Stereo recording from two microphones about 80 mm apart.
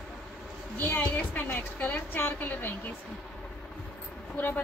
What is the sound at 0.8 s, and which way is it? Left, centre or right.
A woman's voice, left.